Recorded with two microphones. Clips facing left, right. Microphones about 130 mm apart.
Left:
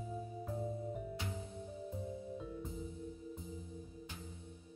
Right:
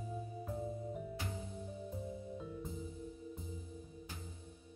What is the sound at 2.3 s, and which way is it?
Music, centre (ahead or behind).